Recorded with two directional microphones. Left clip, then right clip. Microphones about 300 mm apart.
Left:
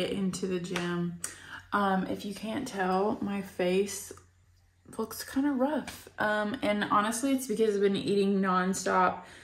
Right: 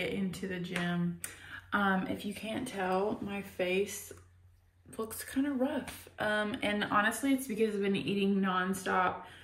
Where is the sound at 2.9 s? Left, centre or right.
Left.